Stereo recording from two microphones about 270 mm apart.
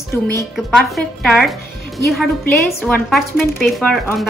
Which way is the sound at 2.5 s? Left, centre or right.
Centre.